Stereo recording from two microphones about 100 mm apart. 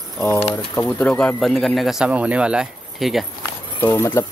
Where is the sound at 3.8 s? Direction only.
20° left (ahead or behind).